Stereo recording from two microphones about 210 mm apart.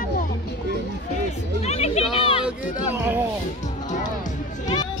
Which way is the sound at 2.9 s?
10° right (ahead or behind).